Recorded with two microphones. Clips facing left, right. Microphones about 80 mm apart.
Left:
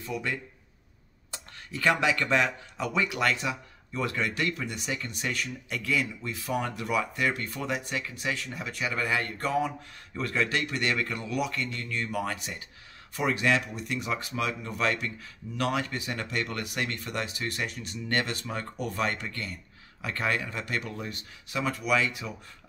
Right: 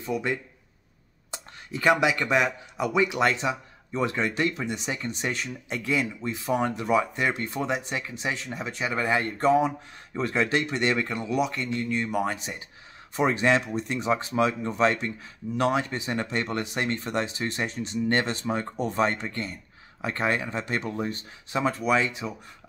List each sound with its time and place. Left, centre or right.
0.0 s speech: right